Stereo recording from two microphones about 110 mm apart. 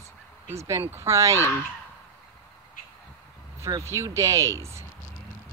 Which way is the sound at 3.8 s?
25° right (ahead or behind).